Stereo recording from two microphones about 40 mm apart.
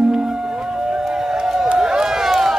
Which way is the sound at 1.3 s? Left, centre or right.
Centre.